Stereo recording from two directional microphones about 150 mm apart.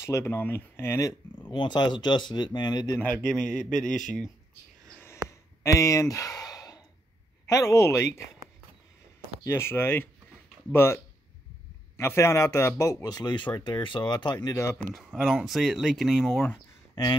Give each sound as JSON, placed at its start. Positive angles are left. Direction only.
{"t": 0.0, "sound": "speech", "side_deg": 15}
{"t": 1.5, "sound": "speech", "side_deg": 30}
{"t": 3.0, "sound": "speech", "side_deg": 10}
{"t": 5.6, "sound": "speech", "side_deg": 20}
{"t": 9.4, "sound": "speech", "side_deg": 15}
{"t": 12.0, "sound": "speech", "side_deg": 20}
{"t": 15.0, "sound": "speech", "side_deg": 0}